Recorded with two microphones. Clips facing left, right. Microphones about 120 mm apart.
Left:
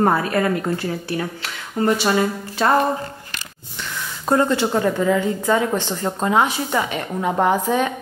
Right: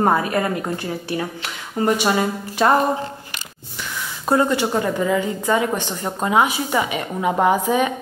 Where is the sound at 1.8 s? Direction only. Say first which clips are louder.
Even; 20° right (ahead or behind).